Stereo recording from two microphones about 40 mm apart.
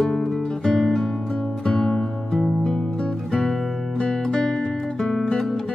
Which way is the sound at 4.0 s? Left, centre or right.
Centre.